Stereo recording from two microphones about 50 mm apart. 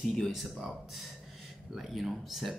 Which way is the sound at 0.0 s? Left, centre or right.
Centre.